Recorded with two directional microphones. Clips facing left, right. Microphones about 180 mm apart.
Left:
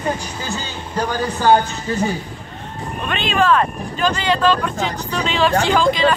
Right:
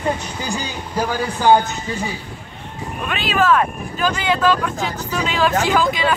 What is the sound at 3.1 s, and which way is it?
Speech, 5° right (ahead or behind).